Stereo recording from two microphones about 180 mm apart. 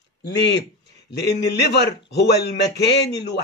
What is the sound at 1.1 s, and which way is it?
A man's voice, 65° left (ahead or behind).